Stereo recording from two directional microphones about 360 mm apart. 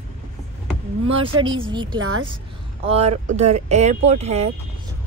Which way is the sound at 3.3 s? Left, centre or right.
Centre.